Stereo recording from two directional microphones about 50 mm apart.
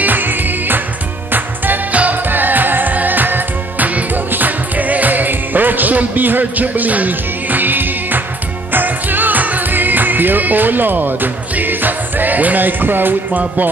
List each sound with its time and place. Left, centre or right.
0.0 s music: right